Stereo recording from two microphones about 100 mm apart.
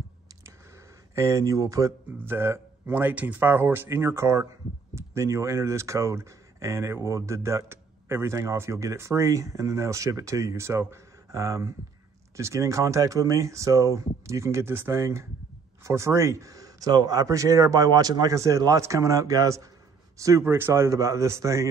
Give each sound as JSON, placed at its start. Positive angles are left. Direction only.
{"t": 1.1, "sound": "a man's voice", "side_deg": -30}